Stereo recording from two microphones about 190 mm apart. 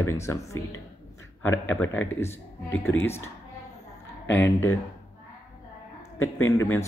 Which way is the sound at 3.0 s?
10° left (ahead or behind).